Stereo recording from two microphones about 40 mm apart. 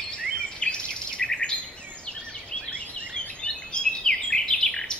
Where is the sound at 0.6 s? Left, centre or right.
Left.